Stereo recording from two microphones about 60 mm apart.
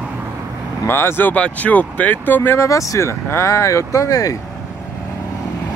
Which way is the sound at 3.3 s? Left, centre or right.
Left.